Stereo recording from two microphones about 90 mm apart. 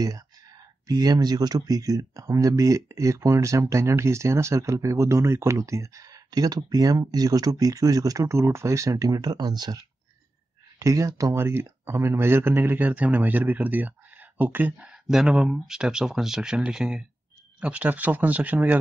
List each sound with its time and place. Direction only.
0.8 s speech: 45° right (ahead or behind)
10.8 s speech: 40° right (ahead or behind)
11.3 s speech: 25° right (ahead or behind)
14.9 s speech: 10° right (ahead or behind)